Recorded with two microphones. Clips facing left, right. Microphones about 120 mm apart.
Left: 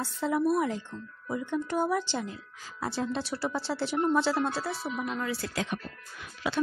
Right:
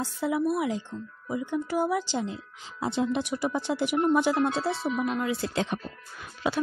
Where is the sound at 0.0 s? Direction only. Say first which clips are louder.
Right 1 dB; 10° right (ahead or behind).